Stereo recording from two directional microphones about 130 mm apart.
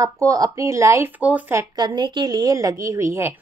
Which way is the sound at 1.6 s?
30° right (ahead or behind).